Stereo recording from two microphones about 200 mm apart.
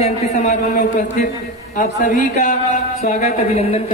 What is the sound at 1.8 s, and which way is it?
A woman's voice, 40° left (ahead or behind).